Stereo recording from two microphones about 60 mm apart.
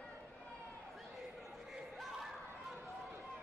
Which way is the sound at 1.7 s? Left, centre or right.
Centre.